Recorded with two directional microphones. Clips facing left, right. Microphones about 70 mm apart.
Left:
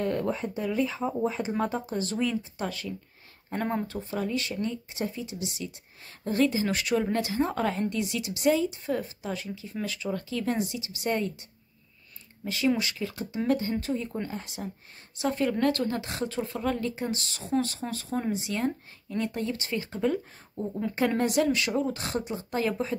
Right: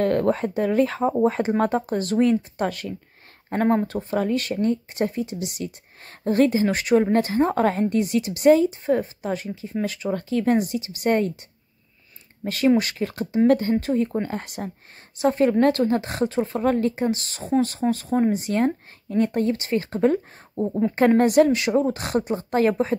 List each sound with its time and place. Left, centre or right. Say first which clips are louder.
0.0 s speech: right 8 dB; right
1.6 s speech: right 7 dB; right
12.4 s speech: right 7 dB; right
15.1 s speech: right 8 dB; right